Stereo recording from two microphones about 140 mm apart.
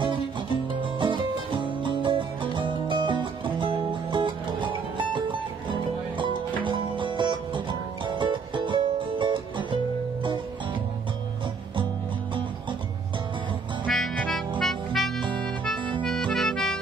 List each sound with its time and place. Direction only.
0.9 s music: 35° right (ahead or behind)
13.8 s music: centre (ahead or behind)